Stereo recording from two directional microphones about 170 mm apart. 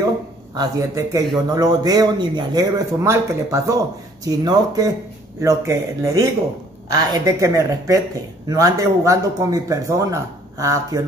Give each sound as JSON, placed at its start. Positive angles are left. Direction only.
{"t": 0.6, "sound": "a man's voice", "side_deg": -20}